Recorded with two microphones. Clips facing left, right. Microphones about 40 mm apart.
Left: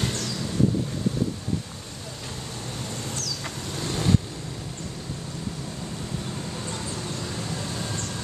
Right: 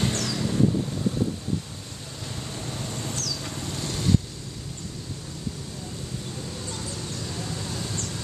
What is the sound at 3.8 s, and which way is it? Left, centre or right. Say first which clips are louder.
Vehicle: left 1 dB; centre.